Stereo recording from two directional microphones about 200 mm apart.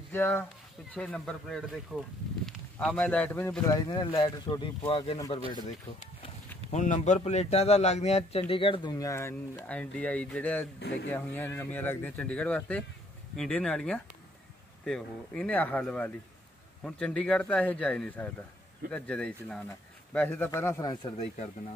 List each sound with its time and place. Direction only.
0.1 s speech: 10° left (ahead or behind); by 5.2 s 30° left (ahead or behind)
6.7 s a man's voice: 35° left (ahead or behind); by 21.1 s 20° left (ahead or behind)